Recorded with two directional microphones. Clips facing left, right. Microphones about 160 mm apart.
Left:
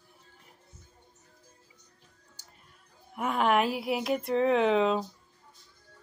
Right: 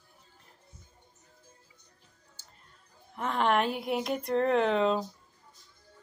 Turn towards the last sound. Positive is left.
turn(degrees=0)  # may be behind; listen again after turning